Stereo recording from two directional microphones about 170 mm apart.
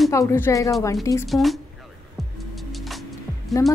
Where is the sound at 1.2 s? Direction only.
Centre (ahead or behind).